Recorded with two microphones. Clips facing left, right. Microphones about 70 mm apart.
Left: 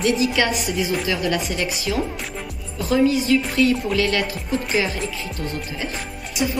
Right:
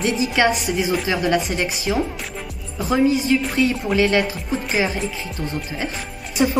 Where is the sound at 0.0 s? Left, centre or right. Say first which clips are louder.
Right 1 dB; right.